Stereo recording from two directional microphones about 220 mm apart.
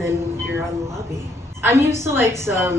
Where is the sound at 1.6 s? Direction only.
10° right (ahead or behind).